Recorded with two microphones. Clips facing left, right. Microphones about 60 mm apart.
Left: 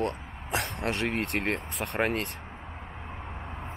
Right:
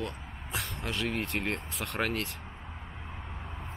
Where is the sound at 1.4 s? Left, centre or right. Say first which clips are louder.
Left 3 dB; left.